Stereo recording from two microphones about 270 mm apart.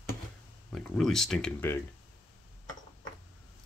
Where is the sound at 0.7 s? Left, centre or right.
Centre.